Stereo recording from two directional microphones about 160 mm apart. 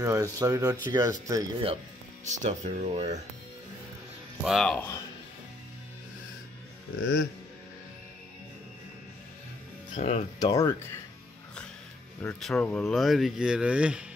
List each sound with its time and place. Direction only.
0.0 s speech: 20° right (ahead or behind)
2.2 s speech: 50° right (ahead or behind)
4.5 s speech: centre (ahead or behind)
4.7 s speech: 15° left (ahead or behind)
7.0 s speech: 90° left
9.9 s speech: 40° left (ahead or behind)
10.4 s speech: 20° left (ahead or behind)
12.2 s speech: 5° left (ahead or behind)